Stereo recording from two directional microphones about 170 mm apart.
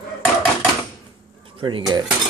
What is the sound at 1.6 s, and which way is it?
Speech, 30° right (ahead or behind).